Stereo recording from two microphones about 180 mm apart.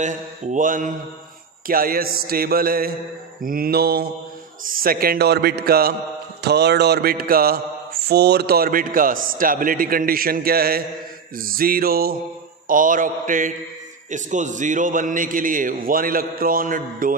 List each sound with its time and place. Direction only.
0.0 s a man's voice: 45° right (ahead or behind)
1.7 s mantra: 55° right (ahead or behind)
11.3 s a man's voice: 55° right (ahead or behind)